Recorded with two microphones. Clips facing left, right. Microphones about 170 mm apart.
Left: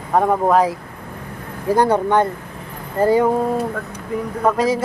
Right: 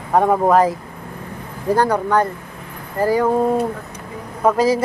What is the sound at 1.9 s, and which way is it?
Speech, 25° left (ahead or behind).